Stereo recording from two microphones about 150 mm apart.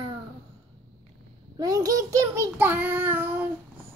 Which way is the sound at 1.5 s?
25° right (ahead or behind).